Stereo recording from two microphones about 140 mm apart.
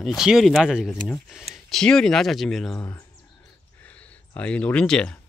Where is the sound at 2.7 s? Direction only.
20° left (ahead or behind).